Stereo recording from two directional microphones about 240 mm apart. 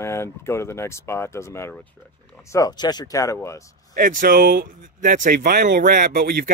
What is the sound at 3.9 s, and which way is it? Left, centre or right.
Speech, right.